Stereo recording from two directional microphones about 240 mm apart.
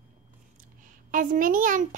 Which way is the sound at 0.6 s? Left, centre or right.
Right.